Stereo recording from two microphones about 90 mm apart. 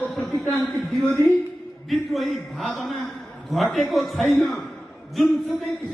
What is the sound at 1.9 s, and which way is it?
A man's voice, centre (ahead or behind).